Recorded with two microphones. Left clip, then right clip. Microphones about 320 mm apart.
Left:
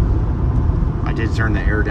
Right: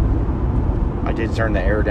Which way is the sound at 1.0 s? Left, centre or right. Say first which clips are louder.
Right 1 dB; centre.